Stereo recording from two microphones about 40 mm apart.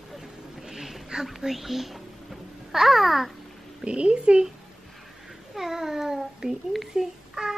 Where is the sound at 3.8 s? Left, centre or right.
Right.